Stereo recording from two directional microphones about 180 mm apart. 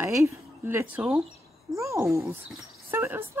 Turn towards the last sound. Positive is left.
turn(degrees=-15)  # may be behind; listen again after turning